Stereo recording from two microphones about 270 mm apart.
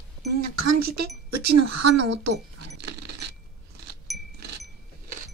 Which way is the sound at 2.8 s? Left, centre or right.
Right.